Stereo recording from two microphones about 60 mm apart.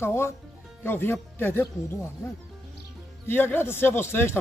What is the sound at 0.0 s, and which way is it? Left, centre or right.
Speech, left.